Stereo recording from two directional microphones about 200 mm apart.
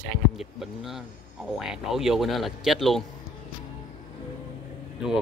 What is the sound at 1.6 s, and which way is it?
Speech, centre (ahead or behind).